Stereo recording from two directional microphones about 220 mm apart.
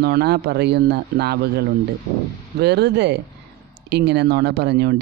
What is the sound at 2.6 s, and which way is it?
Speech, 50° right (ahead or behind).